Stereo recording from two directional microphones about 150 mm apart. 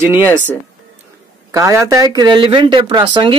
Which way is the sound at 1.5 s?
20° right (ahead or behind).